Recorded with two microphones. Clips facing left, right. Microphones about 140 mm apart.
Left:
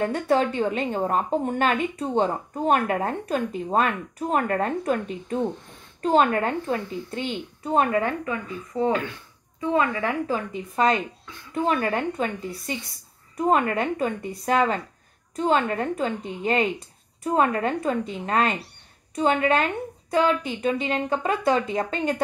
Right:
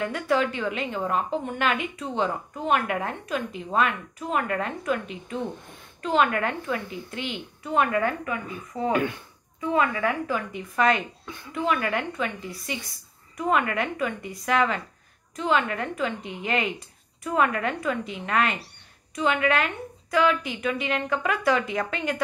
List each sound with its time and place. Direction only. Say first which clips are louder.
0.0 s a woman's voice: left 3 dB; 35° left (ahead or behind)
8.7 s speech: left 4 dB; centre (ahead or behind)
9.6 s a woman's voice: left 1 dB; 30° left (ahead or behind)
13.4 s a woman's voice: left 3 dB; 35° left (ahead or behind)